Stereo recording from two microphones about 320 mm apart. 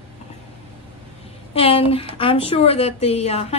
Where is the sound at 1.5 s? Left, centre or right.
Centre.